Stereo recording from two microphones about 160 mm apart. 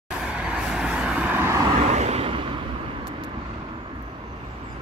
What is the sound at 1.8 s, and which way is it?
Vehicle, 45° right (ahead or behind).